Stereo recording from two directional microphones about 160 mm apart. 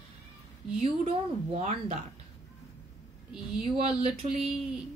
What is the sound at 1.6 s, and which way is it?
Speech, 45° right (ahead or behind).